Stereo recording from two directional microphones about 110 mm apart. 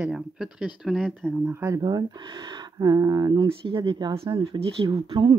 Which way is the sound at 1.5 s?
25° right (ahead or behind).